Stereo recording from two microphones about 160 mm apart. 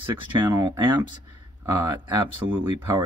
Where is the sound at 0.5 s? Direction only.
20° right (ahead or behind).